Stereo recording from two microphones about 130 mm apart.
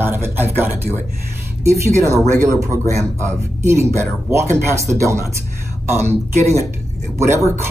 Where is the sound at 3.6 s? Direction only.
20° right (ahead or behind).